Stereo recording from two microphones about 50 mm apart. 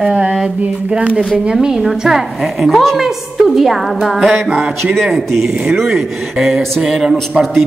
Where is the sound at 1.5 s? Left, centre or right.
Centre.